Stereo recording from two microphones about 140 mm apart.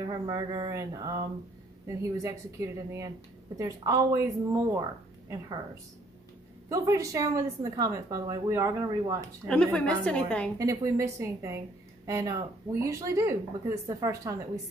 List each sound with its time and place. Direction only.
0.0 s a woman's voice: 30° right (ahead or behind)
2.2 s a woman's voice: 20° right (ahead or behind)
6.7 s a woman's voice: 25° right (ahead or behind)
9.5 s a woman's voice: 5° left (ahead or behind)
10.6 s a woman's voice: 20° right (ahead or behind)